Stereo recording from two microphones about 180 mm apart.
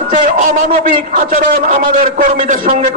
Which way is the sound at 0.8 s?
50° right (ahead or behind).